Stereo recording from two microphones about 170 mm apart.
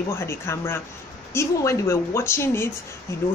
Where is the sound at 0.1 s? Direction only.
15° left (ahead or behind).